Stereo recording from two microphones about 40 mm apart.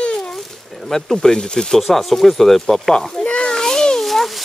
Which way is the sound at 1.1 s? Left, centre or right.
Centre.